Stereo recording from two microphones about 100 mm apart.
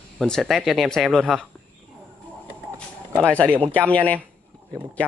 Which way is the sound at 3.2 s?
10° left (ahead or behind).